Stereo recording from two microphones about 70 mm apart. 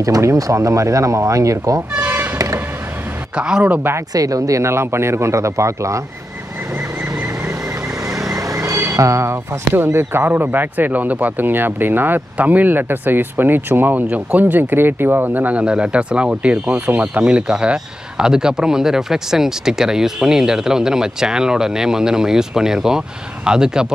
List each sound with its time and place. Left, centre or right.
0.0 s speech: right
2.0 s toot: right
2.3 s vehicle: right
3.3 s speech: centre
3.6 s speech: right
4.1 s speech: right
8.1 s vehicle: right
8.7 s music: right
9.0 s speech: right
9.9 s speech: right; by 23.9 s centre